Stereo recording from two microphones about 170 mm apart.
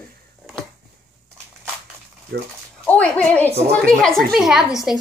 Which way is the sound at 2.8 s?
5° left (ahead or behind).